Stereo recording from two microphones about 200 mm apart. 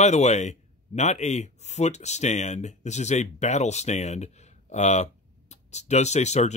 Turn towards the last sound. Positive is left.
turn(degrees=35)  # may be behind; listen again after turning